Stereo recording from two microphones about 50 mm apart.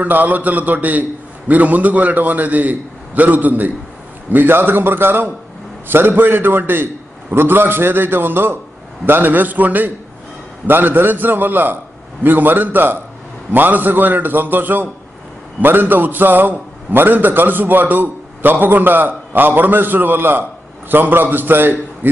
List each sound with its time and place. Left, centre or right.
0.0 s a man's voice: right